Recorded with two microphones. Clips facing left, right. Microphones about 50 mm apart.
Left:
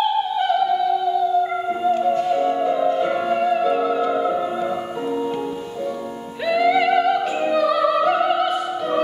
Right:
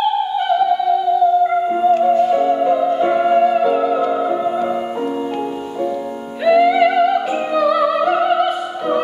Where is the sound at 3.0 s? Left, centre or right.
Centre.